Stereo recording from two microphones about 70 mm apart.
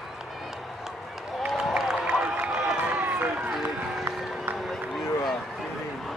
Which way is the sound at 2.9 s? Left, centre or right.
Right.